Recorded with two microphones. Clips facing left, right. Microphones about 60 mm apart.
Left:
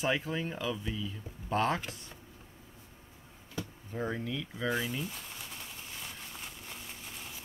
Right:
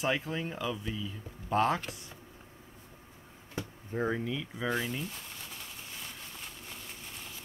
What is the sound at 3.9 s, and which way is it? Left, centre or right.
Speech, centre.